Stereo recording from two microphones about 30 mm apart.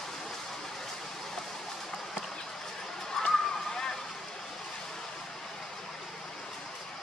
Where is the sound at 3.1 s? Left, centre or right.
Centre.